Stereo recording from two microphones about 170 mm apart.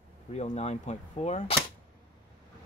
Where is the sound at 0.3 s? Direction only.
40° left (ahead or behind).